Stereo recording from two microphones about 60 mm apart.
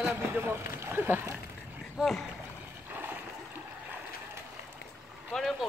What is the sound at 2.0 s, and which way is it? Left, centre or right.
Speech, centre.